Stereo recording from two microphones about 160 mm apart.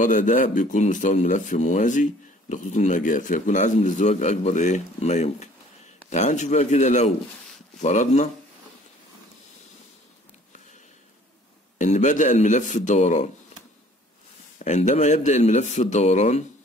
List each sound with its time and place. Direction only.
0.0 s a man's voice: 55° left (ahead or behind)
11.8 s a man's voice: 50° left (ahead or behind)
14.6 s a man's voice: 45° left (ahead or behind)